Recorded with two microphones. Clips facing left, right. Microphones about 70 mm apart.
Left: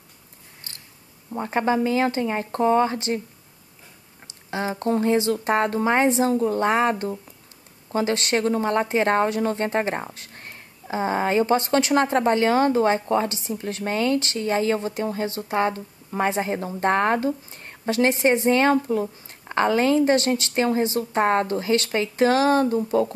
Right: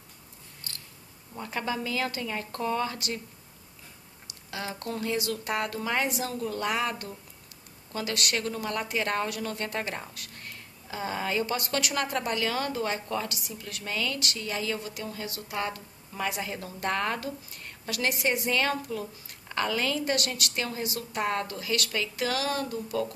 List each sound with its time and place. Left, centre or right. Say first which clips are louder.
0.7 s a sound: even; left
1.3 s a woman's voice: left 10 dB; left
4.3 s a woman's voice: left 9 dB; left